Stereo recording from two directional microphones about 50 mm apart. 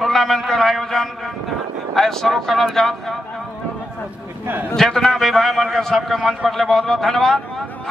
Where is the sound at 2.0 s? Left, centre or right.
Centre.